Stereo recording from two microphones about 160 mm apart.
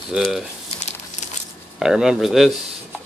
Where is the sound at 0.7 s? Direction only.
40° left (ahead or behind).